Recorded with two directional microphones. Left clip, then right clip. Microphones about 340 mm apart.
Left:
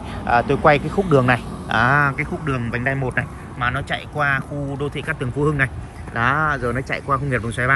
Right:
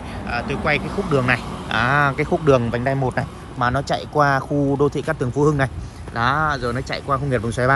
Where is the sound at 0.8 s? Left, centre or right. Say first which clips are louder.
Left 3 dB; right.